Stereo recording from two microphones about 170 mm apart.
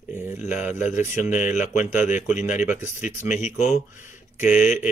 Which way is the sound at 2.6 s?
15° right (ahead or behind).